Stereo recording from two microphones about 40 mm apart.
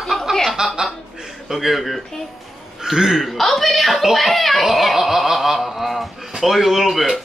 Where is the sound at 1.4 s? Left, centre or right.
Centre.